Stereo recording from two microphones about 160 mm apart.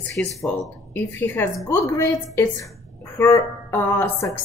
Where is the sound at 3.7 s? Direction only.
20° left (ahead or behind).